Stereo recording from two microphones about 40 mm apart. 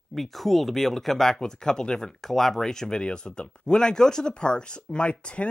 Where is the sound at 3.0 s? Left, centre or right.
Left.